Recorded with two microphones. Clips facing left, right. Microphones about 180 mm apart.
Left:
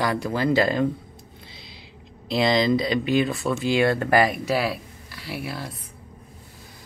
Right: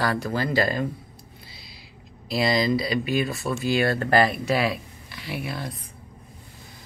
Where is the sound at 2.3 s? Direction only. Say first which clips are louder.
Left 2 dB; 20° left (ahead or behind); by 5.7 s 5° left (ahead or behind).